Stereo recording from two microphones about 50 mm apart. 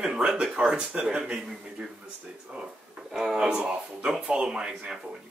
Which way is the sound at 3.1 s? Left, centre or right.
Centre.